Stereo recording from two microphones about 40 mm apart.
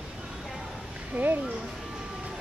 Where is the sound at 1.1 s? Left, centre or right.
Right.